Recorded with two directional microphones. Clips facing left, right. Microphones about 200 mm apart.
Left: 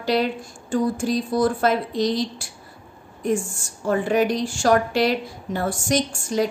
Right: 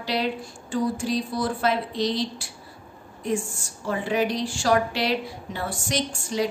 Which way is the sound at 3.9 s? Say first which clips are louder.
Left 5 dB; 45° left (ahead or behind).